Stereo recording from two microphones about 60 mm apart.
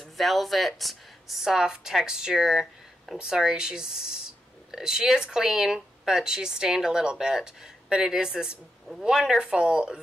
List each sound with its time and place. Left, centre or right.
0.0 s speech: centre
9.4 s speech: centre